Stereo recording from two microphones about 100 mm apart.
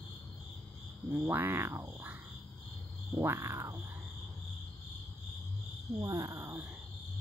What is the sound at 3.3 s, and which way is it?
Speech, 30° right (ahead or behind).